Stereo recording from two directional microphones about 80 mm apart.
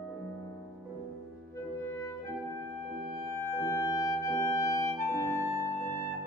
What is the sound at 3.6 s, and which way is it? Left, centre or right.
Music, left.